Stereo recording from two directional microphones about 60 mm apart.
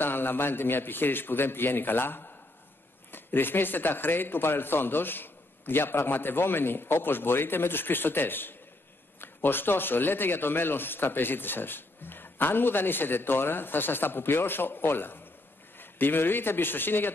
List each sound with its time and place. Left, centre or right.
0.0 s speech: left